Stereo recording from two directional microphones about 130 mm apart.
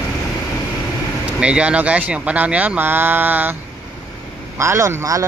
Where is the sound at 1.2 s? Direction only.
10° right (ahead or behind).